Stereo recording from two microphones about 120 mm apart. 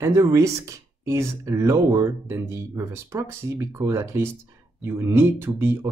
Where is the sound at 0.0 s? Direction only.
25° right (ahead or behind).